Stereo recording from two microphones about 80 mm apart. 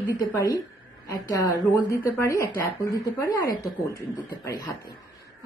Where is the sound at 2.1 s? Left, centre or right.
Left.